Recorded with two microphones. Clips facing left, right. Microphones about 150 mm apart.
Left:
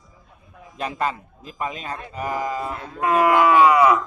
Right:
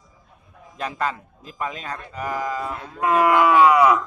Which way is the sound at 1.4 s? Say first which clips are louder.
Left 1 dB; 15° left (ahead or behind).